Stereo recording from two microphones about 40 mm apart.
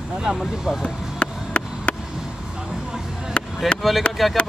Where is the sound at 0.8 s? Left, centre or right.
Left.